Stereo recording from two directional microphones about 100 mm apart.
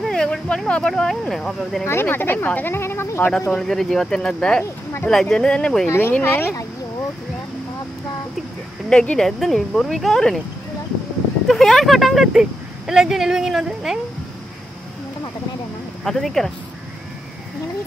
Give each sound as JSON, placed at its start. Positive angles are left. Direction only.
{"t": 0.0, "sound": "speech", "side_deg": 5}
{"t": 1.9, "sound": "speech", "side_deg": 25}
{"t": 3.5, "sound": "speech", "side_deg": 5}
{"t": 5.9, "sound": "speech", "side_deg": 20}
{"t": 8.8, "sound": "speech", "side_deg": 10}
{"t": 11.4, "sound": "speech", "side_deg": 0}
{"t": 16.0, "sound": "speech", "side_deg": 0}